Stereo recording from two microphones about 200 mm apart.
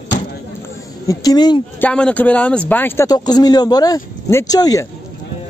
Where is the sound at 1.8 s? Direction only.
5° left (ahead or behind).